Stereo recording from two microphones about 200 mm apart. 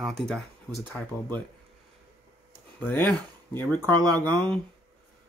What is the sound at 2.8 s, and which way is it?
Speech, 5° left (ahead or behind).